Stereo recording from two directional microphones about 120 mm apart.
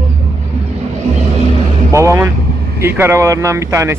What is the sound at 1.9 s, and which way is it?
Speech, 25° right (ahead or behind).